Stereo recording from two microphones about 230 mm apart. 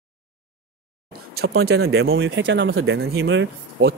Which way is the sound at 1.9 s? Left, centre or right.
Right.